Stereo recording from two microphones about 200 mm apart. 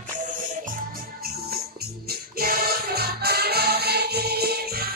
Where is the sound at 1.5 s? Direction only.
50° right (ahead or behind).